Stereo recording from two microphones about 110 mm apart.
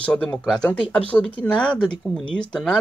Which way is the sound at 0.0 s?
10° left (ahead or behind).